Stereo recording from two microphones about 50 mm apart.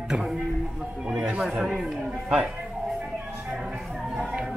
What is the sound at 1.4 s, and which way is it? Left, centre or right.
Speech, centre.